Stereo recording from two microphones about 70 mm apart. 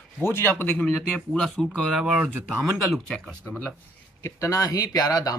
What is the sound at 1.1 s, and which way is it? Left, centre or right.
Speech, centre.